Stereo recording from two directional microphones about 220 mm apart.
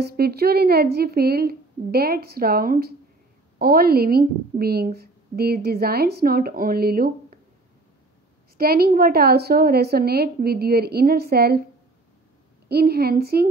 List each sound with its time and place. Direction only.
0.0 s a woman's voice: 45° right (ahead or behind)
8.5 s a woman's voice: 45° right (ahead or behind)
12.6 s a woman's voice: 45° right (ahead or behind)